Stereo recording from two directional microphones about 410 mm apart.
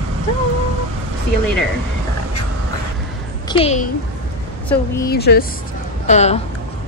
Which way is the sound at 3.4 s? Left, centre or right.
Centre.